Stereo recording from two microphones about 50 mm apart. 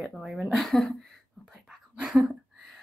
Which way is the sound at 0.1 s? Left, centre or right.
Centre.